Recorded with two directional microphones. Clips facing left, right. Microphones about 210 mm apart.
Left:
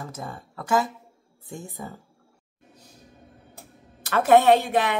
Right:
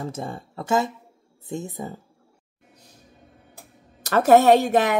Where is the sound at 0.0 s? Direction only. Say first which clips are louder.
Right 5 dB; 25° right (ahead or behind).